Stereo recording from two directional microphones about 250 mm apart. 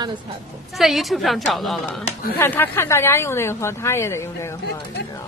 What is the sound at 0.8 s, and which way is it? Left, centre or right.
A woman's voice, centre.